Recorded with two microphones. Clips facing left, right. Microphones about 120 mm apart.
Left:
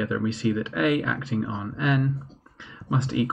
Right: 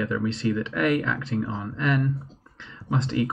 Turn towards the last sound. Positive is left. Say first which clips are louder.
# even
turn(degrees=15)  # may be behind; listen again after turning